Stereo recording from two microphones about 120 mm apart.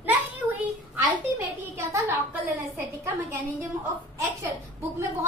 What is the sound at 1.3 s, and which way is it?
Speech, 25° right (ahead or behind).